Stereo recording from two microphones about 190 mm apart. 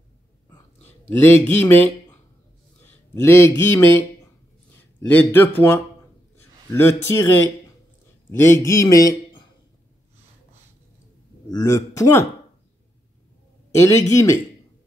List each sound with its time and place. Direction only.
0.8 s speech: 10° left (ahead or behind)
2.8 s a sound: 10° left (ahead or behind)
3.5 s a man's voice: 10° left (ahead or behind)
8.3 s a man's voice: 15° left (ahead or behind)
11.5 s a man's voice: 15° left (ahead or behind)
13.7 s a man's voice: 15° left (ahead or behind)